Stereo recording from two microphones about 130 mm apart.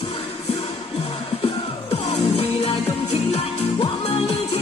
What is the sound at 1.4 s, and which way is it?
Music, 45° left (ahead or behind).